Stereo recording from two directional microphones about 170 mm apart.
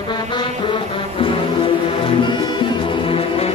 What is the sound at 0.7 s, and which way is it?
Music, 30° left (ahead or behind).